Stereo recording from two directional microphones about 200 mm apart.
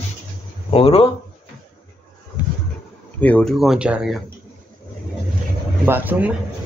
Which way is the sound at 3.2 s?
5° left (ahead or behind).